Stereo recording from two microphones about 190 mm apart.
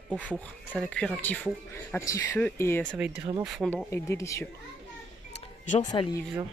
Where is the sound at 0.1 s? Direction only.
5° left (ahead or behind).